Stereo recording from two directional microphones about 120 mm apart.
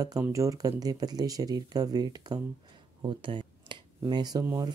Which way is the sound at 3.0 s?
45° right (ahead or behind).